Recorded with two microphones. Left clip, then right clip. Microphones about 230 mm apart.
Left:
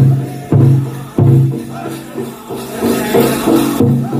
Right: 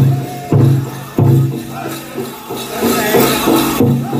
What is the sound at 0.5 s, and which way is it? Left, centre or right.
Music, left.